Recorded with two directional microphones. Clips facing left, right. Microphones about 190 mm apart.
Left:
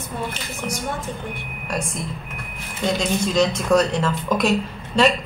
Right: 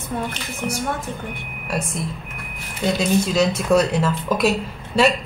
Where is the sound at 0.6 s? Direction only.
15° right (ahead or behind).